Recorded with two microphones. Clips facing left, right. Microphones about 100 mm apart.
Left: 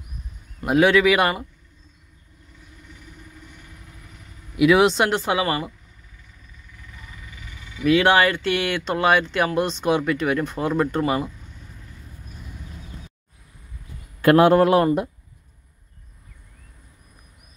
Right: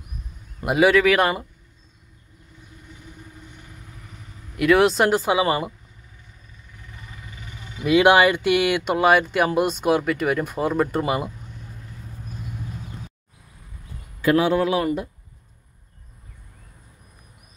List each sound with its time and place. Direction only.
0.7 s speech: 5° right (ahead or behind)
4.6 s speech: centre (ahead or behind)
5.4 s speech: 20° right (ahead or behind)
7.2 s a sound: 35° right (ahead or behind)
7.8 s speech: 15° right (ahead or behind)
14.2 s a man's voice: 55° left (ahead or behind)